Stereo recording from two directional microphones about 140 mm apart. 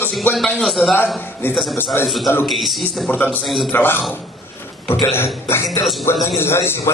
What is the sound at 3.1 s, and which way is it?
Speech, 15° left (ahead or behind).